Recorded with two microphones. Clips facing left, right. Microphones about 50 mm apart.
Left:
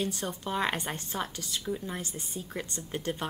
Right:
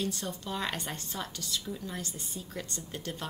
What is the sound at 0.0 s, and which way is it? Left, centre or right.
A woman's voice, left.